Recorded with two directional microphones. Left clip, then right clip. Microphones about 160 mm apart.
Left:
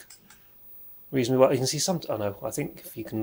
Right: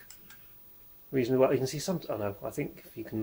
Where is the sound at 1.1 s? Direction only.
20° left (ahead or behind).